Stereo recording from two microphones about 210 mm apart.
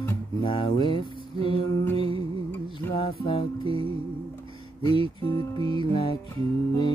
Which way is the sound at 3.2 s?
25° left (ahead or behind).